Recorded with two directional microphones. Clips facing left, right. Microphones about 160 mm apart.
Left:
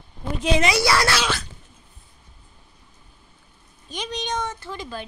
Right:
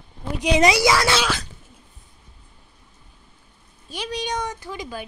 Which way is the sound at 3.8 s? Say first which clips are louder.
Right 1 dB; 5° right (ahead or behind).